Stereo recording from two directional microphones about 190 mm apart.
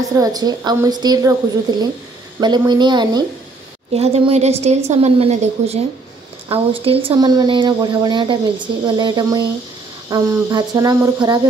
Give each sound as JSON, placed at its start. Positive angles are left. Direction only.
{"t": 0.1, "sound": "speech", "side_deg": -20}
{"t": 3.9, "sound": "a woman's voice", "side_deg": -35}